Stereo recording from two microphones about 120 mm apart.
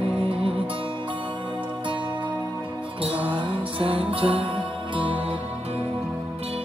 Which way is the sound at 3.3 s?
50° right (ahead or behind).